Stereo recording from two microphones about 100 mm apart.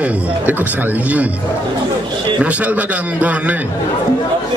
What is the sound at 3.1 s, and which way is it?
Speech, 15° right (ahead or behind).